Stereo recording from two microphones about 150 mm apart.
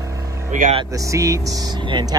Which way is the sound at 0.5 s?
60° right (ahead or behind).